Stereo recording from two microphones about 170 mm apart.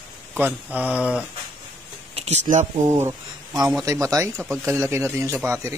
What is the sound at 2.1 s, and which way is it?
Speech, 40° right (ahead or behind).